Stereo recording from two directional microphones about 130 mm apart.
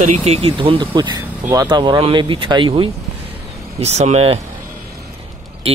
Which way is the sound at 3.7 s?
55° right (ahead or behind).